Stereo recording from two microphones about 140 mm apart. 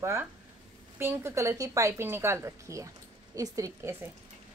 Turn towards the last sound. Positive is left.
turn(degrees=-20)  # may be behind; listen again after turning